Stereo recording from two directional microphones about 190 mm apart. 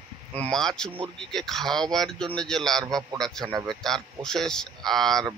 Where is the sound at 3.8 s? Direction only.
5° left (ahead or behind).